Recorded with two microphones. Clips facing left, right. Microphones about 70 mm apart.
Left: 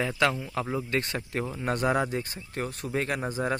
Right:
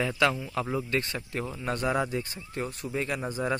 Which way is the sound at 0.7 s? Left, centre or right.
Left.